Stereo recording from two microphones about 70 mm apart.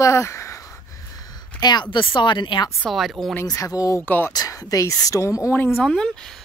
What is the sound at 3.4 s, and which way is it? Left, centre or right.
Speech, left.